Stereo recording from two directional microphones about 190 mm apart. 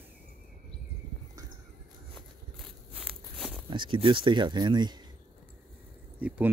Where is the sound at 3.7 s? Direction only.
25° right (ahead or behind).